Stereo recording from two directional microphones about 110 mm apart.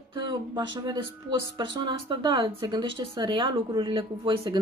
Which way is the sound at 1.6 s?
50° right (ahead or behind).